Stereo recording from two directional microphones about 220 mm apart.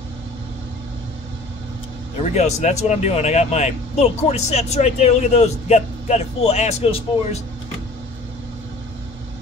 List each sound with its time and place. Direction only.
2.2 s speech: 30° left (ahead or behind)